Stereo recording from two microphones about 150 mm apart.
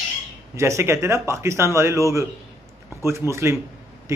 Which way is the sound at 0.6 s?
20° right (ahead or behind).